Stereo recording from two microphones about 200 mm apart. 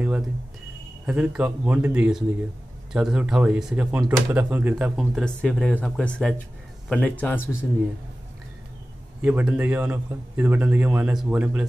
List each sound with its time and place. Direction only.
1.0 s speech: 5° right (ahead or behind)
9.2 s a man's voice: 5° right (ahead or behind)